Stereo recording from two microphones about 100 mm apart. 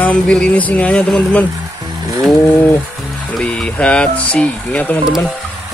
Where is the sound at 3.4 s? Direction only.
10° left (ahead or behind).